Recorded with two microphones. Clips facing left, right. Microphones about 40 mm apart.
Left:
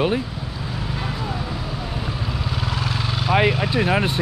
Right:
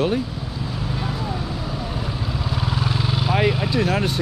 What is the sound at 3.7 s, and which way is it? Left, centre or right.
Speech, left.